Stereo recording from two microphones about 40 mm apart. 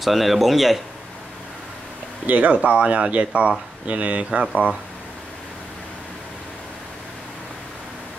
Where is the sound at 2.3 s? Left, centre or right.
Right.